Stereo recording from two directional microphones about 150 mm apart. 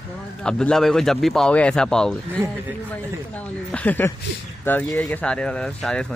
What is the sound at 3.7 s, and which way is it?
Speech, 10° left (ahead or behind).